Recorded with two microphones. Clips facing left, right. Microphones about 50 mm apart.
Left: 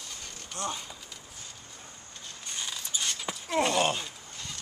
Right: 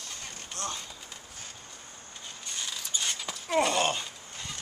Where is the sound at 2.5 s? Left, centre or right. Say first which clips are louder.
Even; centre.